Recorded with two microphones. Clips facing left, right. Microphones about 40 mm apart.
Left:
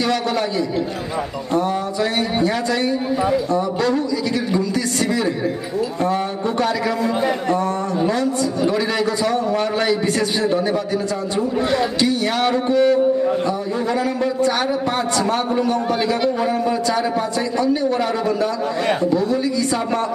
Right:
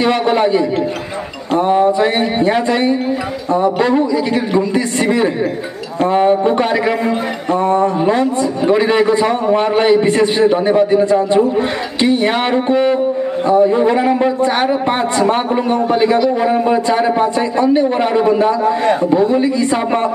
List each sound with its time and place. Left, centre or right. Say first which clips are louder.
0.0 s a man's voice: right 7 dB; right